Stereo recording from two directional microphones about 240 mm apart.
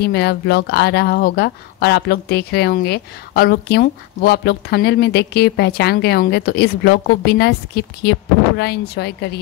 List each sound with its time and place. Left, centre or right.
0.0 s speech: left